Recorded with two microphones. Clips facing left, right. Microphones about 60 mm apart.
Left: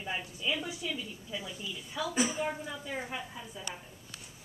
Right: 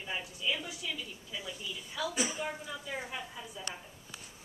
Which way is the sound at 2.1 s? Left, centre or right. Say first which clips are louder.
Left 6 dB; left.